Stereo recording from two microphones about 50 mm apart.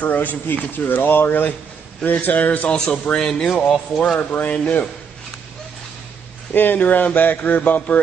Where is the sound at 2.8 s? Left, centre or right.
Centre.